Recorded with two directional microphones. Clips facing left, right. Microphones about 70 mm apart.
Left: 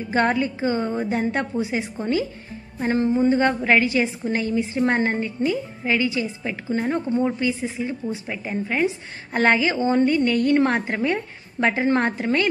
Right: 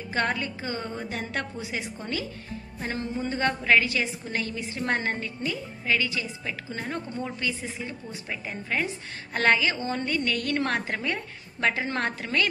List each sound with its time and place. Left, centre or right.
0.1 s a woman's voice: left